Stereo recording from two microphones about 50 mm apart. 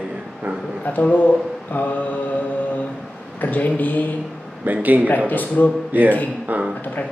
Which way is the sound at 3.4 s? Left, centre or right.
Left.